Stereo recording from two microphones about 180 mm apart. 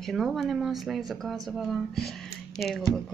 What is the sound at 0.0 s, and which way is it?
Speech, centre (ahead or behind).